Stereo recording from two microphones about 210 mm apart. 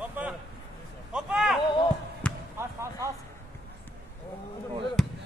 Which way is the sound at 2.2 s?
5° left (ahead or behind).